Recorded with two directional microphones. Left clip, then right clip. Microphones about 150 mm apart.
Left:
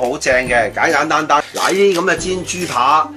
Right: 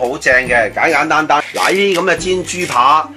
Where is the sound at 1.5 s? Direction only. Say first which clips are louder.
Right 1 dB; 50° right (ahead or behind).